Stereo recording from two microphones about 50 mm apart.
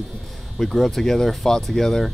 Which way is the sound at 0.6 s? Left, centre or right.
Centre.